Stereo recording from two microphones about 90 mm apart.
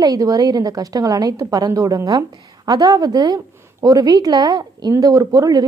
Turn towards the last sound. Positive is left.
turn(degrees=-40)  # may be behind; listen again after turning